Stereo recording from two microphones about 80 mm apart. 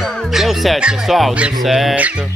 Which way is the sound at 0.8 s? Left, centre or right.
Centre.